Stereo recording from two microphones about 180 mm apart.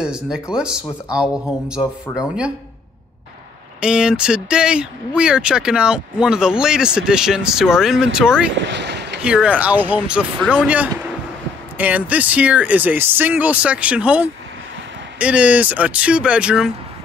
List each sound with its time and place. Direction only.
0.0 s speech: 5° right (ahead or behind)
3.8 s speech: 5° right (ahead or behind)
8.5 s vehicle: 75° right (ahead or behind)
9.2 s speech: 5° right (ahead or behind)
11.8 s speech: 10° right (ahead or behind)